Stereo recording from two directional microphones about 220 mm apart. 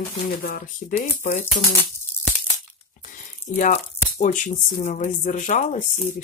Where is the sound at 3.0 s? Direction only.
35° left (ahead or behind).